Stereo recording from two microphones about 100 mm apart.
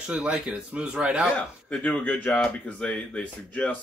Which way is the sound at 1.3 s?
15° left (ahead or behind).